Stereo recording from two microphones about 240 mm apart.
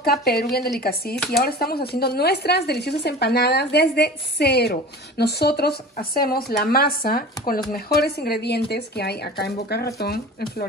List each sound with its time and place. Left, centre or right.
0.0 s speech: left